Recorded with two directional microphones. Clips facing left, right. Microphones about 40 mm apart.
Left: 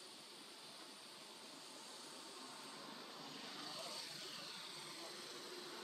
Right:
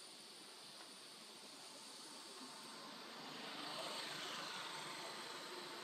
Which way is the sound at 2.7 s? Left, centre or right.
Centre.